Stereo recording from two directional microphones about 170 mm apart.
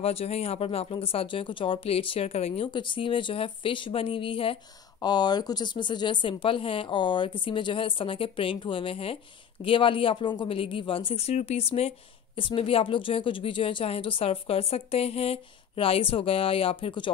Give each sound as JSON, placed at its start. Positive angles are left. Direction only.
{"t": 0.0, "sound": "speech", "side_deg": 35}